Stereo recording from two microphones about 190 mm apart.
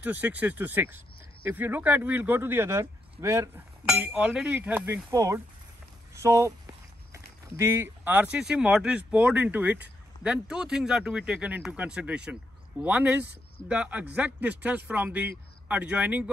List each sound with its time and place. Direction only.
0.0 s speech: 10° right (ahead or behind)